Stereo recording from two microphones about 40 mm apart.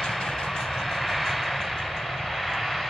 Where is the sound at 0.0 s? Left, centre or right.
Centre.